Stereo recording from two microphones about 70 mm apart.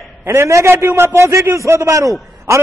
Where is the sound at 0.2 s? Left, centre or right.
Right.